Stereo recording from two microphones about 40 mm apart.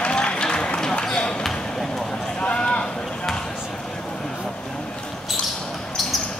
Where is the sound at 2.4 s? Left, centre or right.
Left.